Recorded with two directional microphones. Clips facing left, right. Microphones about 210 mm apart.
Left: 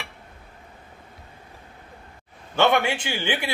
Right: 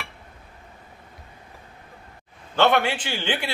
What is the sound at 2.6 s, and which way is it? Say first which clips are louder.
Speech: even; 10° left (ahead or behind).